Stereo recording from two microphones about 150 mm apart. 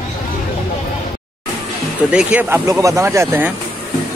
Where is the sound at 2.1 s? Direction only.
10° right (ahead or behind).